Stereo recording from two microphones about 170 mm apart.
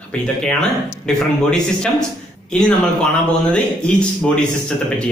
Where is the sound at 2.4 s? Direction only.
5° left (ahead or behind).